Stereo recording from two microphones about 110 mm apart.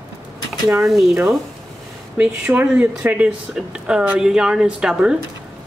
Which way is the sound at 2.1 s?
15° right (ahead or behind).